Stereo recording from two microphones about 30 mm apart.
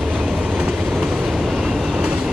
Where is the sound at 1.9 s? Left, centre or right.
Right.